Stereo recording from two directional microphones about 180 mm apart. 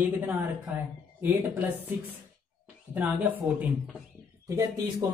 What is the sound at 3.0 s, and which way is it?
Speech, 10° right (ahead or behind).